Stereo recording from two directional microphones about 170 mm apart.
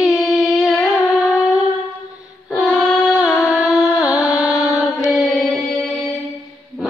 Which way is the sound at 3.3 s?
20° left (ahead or behind).